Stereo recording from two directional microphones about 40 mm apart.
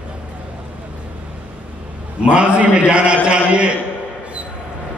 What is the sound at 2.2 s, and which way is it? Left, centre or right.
Speech, right.